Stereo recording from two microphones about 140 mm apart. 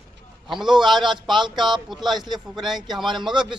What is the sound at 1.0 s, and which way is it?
Speech, 35° right (ahead or behind).